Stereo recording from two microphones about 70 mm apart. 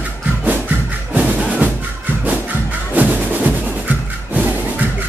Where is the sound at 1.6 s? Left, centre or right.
Right.